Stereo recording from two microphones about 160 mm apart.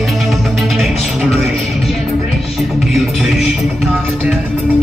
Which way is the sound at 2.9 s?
Centre (ahead or behind).